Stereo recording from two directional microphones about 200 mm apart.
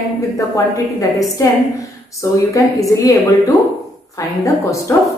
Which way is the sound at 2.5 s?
15° left (ahead or behind).